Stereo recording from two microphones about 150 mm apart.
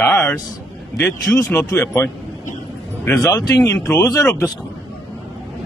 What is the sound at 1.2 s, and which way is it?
Speech, 10° left (ahead or behind).